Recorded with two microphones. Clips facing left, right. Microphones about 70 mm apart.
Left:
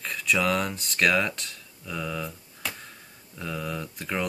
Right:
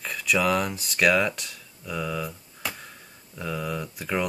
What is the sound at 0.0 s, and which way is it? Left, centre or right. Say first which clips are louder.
Speech: right 1 dB; centre.